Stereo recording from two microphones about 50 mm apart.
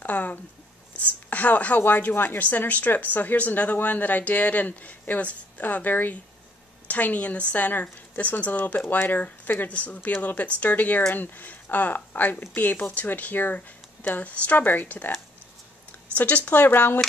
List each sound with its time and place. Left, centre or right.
0.0 s a sound: left
0.9 s speech: left
16.2 s speech: left